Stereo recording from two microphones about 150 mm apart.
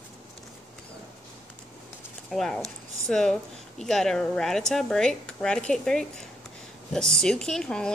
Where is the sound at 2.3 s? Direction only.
Centre (ahead or behind).